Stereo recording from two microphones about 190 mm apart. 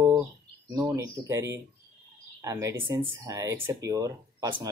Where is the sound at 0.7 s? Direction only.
15° right (ahead or behind).